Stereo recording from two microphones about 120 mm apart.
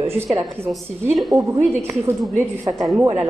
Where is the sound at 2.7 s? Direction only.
45° right (ahead or behind).